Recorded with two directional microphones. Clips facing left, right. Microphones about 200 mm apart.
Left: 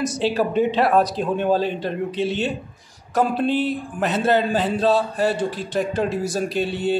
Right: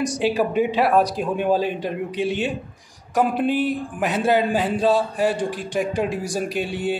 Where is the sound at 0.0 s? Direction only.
15° right (ahead or behind).